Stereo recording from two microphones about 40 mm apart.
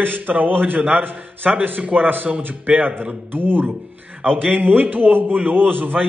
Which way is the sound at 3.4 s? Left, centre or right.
Right.